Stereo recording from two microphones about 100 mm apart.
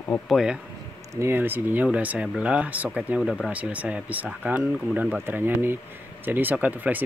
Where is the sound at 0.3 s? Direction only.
5° right (ahead or behind).